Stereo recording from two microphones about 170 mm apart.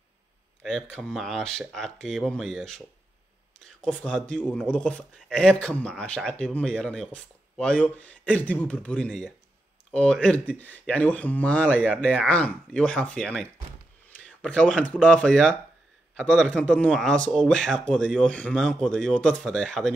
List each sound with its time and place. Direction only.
0.6 s speech: centre (ahead or behind)